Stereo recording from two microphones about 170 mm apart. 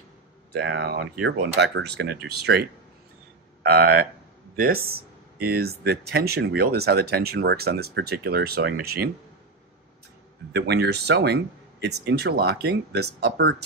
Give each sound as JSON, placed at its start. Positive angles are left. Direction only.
{"t": 0.5, "sound": "speech", "side_deg": -85}
{"t": 3.6, "sound": "speech", "side_deg": -65}
{"t": 5.5, "sound": "speech", "side_deg": -65}
{"t": 10.5, "sound": "speech", "side_deg": -85}